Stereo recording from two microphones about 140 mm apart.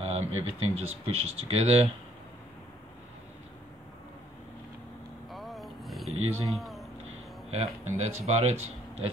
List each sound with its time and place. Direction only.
0.0 s speech: 45° right (ahead or behind)
5.3 s vehicle: centre (ahead or behind)
6.4 s speech: centre (ahead or behind)
7.5 s speech: 50° right (ahead or behind)